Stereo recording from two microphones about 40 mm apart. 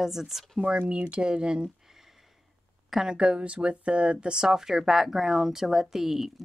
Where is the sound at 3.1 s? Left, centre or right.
Right.